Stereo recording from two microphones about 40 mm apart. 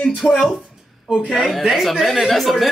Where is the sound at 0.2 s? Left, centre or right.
Centre.